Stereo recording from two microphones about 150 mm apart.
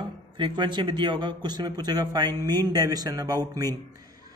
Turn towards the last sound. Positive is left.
turn(degrees=-25)  # may be behind; listen again after turning